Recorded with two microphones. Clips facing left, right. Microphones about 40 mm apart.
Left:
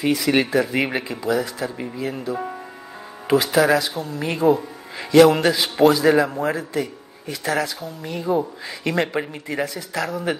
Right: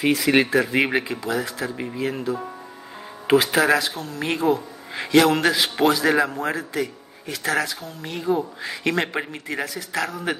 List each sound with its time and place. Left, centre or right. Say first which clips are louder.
0.0 s a man's voice: right 1 dB; centre
0.5 s a man's voice: even; centre
0.7 s speech: right 2 dB; centre
1.0 s a man's voice: left 3 dB; centre
3.9 s speech: left 4 dB; centre
4.2 s a man's voice: left 3 dB; centre